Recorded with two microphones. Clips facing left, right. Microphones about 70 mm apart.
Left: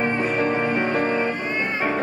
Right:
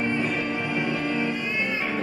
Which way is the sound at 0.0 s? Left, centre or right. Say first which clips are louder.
Left 4 dB; left.